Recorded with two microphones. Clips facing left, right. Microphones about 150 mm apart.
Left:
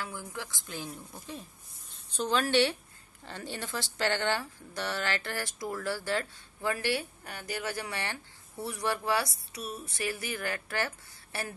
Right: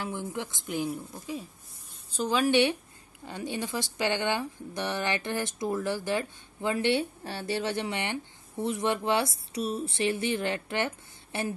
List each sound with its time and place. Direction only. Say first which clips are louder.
0.0 s speech: right 6 dB; 25° right (ahead or behind)